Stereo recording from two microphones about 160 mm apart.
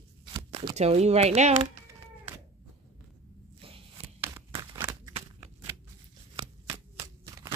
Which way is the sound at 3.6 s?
35° right (ahead or behind).